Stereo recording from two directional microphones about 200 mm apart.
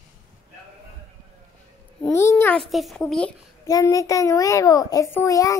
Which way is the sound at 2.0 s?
10° left (ahead or behind).